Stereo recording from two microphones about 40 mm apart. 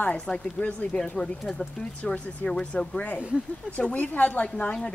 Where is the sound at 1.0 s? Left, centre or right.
Centre.